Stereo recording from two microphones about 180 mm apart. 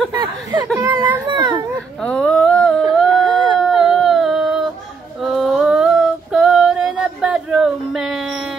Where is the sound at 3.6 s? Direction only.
Centre (ahead or behind).